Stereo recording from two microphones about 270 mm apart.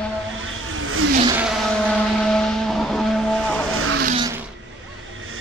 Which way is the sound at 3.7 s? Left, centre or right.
Right.